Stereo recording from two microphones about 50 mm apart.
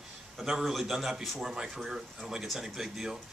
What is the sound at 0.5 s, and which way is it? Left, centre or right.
Speech, centre.